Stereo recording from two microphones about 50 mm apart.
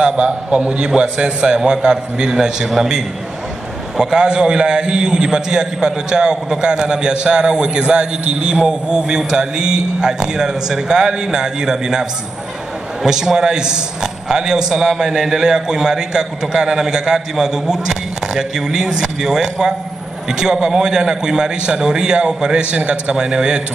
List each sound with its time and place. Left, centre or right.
0.2 s a man's voice: right
3.9 s a man's voice: centre